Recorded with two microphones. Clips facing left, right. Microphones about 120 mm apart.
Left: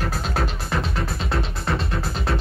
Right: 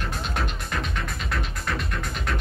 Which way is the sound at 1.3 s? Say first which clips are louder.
Left 4 dB; 30° left (ahead or behind).